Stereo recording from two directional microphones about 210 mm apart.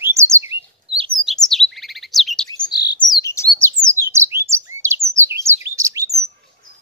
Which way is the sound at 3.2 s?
15° left (ahead or behind).